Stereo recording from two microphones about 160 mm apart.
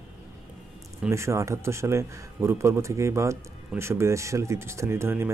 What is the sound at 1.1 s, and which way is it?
Speech, 20° right (ahead or behind).